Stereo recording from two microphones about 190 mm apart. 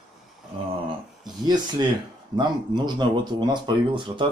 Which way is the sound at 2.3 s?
25° right (ahead or behind).